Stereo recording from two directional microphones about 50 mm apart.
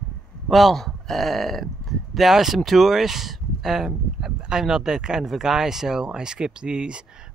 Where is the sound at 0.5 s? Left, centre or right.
Centre.